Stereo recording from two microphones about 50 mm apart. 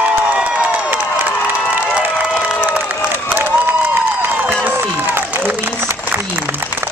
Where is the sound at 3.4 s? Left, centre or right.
Right.